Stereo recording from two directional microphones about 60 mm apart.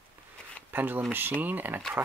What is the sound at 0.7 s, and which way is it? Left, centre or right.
Speech, right.